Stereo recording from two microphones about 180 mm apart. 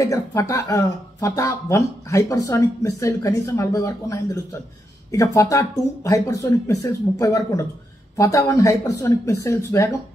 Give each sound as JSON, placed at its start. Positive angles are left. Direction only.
{"t": 0.0, "sound": "speech", "side_deg": 20}